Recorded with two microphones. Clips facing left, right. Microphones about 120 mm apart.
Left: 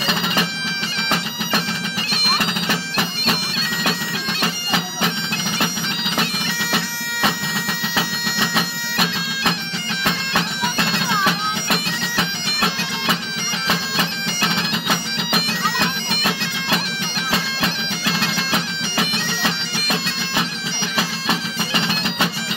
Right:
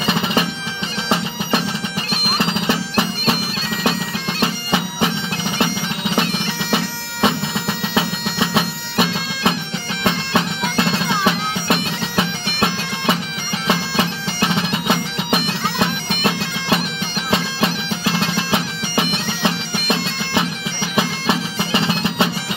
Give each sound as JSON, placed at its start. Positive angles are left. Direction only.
{"t": 0.0, "sound": "bagpipes", "side_deg": -20}
{"t": 4.4, "sound": "bagpipes", "side_deg": -20}
{"t": 6.7, "sound": "bagpipes", "side_deg": -20}
{"t": 10.8, "sound": "bagpipes", "side_deg": -25}
{"t": 14.4, "sound": "bagpipes", "side_deg": -15}